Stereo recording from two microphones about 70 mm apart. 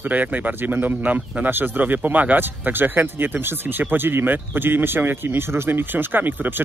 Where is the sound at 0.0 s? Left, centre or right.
Right.